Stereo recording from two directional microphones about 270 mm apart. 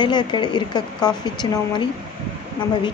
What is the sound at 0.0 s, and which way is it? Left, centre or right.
Speech, centre.